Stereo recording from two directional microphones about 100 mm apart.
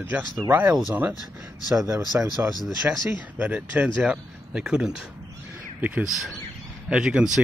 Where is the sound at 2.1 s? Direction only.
20° right (ahead or behind).